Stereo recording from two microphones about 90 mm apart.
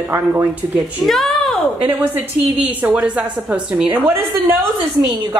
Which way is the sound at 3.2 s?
15° right (ahead or behind).